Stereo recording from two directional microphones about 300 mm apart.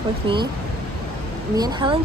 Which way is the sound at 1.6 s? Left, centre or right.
Centre.